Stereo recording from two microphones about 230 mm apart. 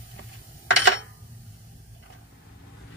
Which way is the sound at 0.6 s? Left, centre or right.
Left.